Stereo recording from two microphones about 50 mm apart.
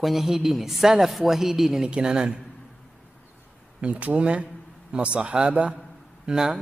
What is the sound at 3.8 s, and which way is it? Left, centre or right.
A man's voice, right.